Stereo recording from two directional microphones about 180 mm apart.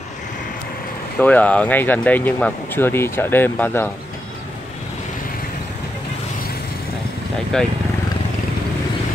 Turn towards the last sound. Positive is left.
turn(degrees=5)  # may be behind; listen again after turning